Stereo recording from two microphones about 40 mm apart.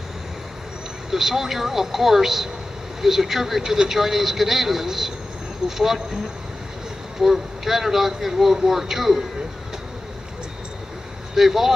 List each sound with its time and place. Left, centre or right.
1.1 s speech: centre
7.2 s speech: centre
11.3 s speech: centre